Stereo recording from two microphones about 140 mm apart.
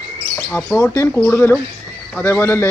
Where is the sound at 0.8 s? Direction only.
20° left (ahead or behind).